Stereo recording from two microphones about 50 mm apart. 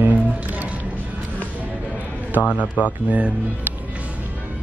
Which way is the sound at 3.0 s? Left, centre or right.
Right.